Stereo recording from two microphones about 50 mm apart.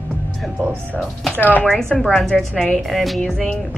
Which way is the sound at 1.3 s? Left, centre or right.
Left.